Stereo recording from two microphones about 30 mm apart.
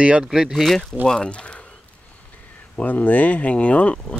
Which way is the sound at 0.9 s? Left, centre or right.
Left.